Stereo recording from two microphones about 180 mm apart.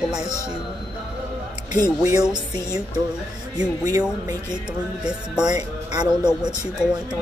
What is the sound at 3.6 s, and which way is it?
Speech, 20° right (ahead or behind).